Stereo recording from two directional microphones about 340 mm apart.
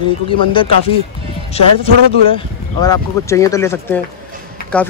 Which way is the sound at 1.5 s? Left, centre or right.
Centre.